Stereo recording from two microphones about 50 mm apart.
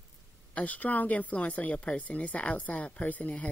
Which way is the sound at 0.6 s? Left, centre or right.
Left.